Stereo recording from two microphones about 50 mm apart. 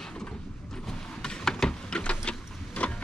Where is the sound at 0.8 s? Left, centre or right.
Centre.